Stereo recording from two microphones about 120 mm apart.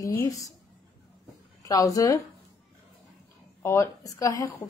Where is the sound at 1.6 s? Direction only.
30° left (ahead or behind).